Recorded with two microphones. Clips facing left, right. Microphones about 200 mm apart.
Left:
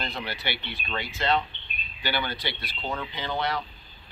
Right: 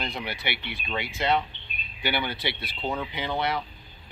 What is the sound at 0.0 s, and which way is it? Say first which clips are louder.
Speech: right 1 dB; 20° right (ahead or behind).